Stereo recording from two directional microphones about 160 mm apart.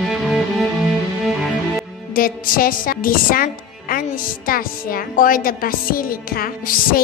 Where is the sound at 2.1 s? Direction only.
60° left (ahead or behind).